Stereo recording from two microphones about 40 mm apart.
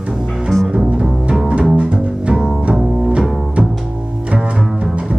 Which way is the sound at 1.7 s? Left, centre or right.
Right.